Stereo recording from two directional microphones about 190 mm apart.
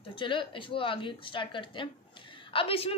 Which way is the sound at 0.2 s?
25° left (ahead or behind).